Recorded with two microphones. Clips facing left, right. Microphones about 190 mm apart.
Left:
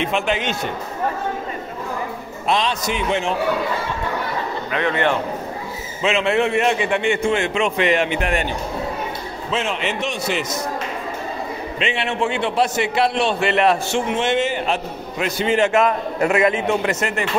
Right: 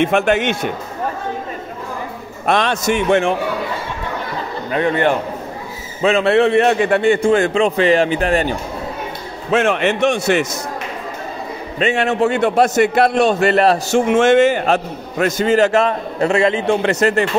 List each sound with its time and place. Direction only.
0.0 s a man's voice: 50° right (ahead or behind)
2.4 s a man's voice: 55° right (ahead or behind)
4.7 s a man's voice: 40° right (ahead or behind)
9.5 s a man's voice: 55° right (ahead or behind)
11.8 s a man's voice: 45° right (ahead or behind)